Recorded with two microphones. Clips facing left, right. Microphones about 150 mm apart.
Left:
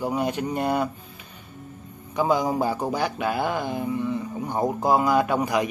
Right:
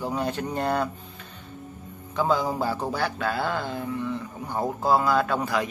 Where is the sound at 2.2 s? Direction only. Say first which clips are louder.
Left 2 dB; 15° left (ahead or behind).